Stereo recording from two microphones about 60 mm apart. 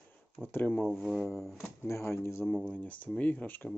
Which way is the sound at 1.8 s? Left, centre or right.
Left.